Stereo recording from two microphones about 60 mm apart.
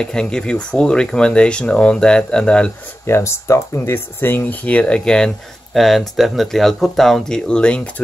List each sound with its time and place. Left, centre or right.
0.0 s speech: centre
3.1 s speech: left
4.6 s speech: left
5.8 s speech: centre